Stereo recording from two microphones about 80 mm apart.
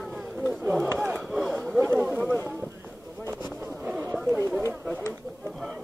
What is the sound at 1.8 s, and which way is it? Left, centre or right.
Speech, right.